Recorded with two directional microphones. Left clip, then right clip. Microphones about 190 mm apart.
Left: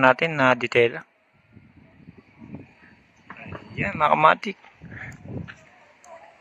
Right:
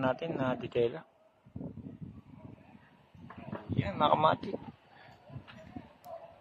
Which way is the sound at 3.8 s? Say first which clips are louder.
Left 9 dB; 5° left (ahead or behind).